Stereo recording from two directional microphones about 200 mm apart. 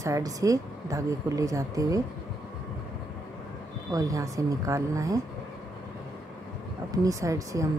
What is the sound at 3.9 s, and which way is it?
Speech, 15° right (ahead or behind).